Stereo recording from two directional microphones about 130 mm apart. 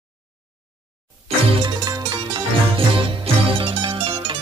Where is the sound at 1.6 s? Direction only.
30° right (ahead or behind).